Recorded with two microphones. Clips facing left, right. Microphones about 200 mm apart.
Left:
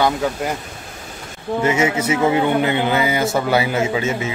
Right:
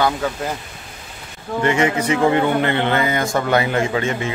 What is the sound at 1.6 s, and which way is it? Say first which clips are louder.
Speech: right 1 dB; 5° left (ahead or behind).